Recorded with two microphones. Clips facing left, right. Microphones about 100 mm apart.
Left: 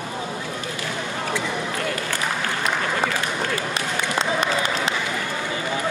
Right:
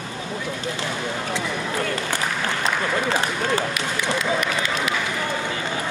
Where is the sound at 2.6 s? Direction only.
30° right (ahead or behind).